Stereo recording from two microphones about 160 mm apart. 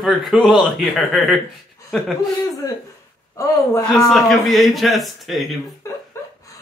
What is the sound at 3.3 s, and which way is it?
Speech, 20° left (ahead or behind).